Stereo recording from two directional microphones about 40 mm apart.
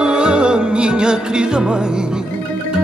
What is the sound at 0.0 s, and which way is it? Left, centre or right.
Music, right.